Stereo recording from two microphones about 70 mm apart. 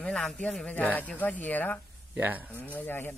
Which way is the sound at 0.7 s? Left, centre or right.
Left.